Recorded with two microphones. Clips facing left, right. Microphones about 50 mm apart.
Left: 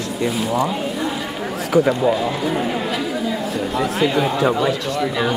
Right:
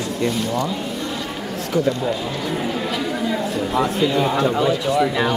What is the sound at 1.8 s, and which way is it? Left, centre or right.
Speech, centre.